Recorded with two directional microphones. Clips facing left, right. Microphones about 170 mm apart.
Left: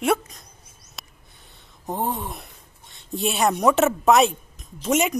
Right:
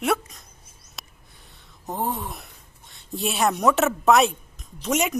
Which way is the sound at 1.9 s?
Centre (ahead or behind).